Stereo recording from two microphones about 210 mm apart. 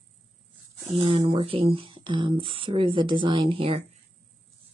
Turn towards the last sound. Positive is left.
turn(degrees=-25)  # may be behind; listen again after turning